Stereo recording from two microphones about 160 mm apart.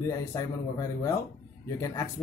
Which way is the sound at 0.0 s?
20° left (ahead or behind).